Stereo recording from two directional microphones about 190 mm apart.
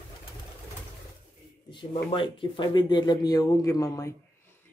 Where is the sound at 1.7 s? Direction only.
25° left (ahead or behind).